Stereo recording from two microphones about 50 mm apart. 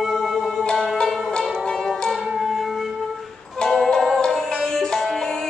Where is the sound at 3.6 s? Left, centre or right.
Centre.